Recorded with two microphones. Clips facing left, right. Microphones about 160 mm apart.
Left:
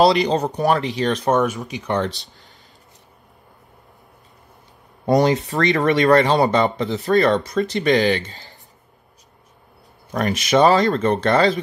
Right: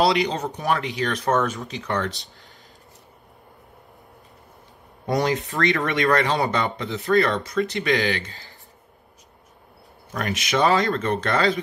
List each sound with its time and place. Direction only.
0.1 s speech: 35° left (ahead or behind)
5.0 s speech: 30° left (ahead or behind)
10.1 s speech: 35° left (ahead or behind)